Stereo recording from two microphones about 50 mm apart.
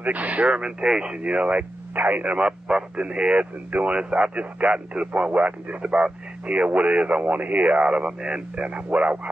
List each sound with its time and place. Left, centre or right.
0.0 s speech: right
2.3 s speech: right